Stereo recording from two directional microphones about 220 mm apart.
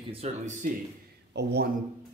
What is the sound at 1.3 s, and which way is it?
Speech, 50° right (ahead or behind).